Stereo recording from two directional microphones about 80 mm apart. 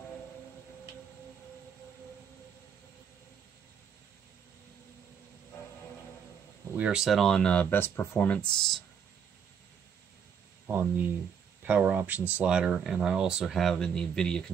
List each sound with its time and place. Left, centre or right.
6.8 s speech: centre
7.4 s speech: left; by 8.8 s centre
10.7 s speech: right; by 14.4 s centre